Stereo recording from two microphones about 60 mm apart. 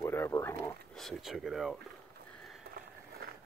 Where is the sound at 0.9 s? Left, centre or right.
Centre.